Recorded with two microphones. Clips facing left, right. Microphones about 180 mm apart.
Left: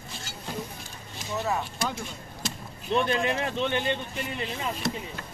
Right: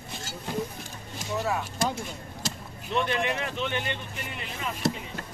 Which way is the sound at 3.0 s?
30° left (ahead or behind).